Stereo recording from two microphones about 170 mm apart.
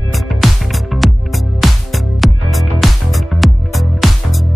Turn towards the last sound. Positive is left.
turn(degrees=0)  # may be behind; listen again after turning